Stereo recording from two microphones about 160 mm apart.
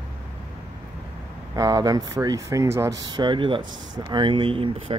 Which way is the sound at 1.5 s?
25° right (ahead or behind).